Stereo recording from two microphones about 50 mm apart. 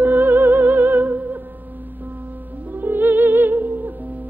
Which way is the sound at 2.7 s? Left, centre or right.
Right.